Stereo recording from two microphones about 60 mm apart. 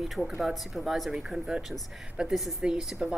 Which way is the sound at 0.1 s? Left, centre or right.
Centre.